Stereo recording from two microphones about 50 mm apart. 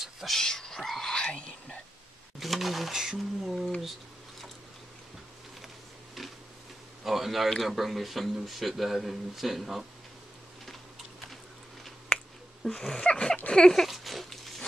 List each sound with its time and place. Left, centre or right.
0.0 s a sound: centre
0.4 s speech: centre
1.1 s speech: centre
2.4 s speech: centre
7.1 s speech: centre
12.7 s sneeze: centre
13.7 s a sound: centre